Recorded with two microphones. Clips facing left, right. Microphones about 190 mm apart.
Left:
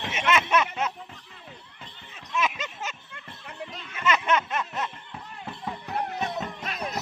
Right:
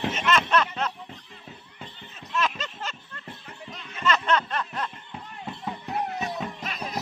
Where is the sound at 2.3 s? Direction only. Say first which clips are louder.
Even; 10° left (ahead or behind).